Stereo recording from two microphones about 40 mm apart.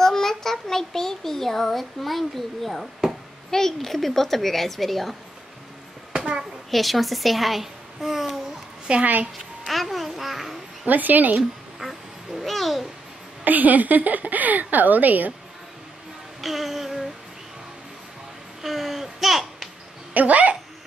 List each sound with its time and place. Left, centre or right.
0.0 s a child's voice: centre
6.7 s a child's voice: centre
8.9 s a woman's voice: right
9.7 s a child's voice: centre
10.9 s a woman's voice: right
11.8 s a child's voice: centre
13.4 s a woman's voice: right
16.3 s music: centre
18.6 s babbling: centre
20.2 s speech: right